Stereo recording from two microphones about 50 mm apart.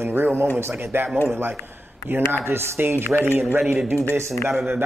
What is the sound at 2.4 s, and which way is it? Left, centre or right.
Speech, right.